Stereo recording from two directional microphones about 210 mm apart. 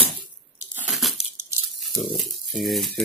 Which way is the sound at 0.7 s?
5° right (ahead or behind).